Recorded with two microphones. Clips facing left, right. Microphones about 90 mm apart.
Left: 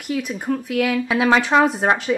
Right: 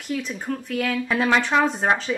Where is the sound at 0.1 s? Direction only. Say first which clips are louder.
Left 4 dB; 10° left (ahead or behind).